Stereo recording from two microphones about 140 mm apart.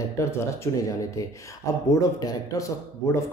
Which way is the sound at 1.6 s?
20° left (ahead or behind).